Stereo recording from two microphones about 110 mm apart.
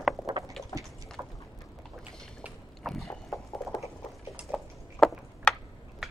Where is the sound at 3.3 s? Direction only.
30° left (ahead or behind).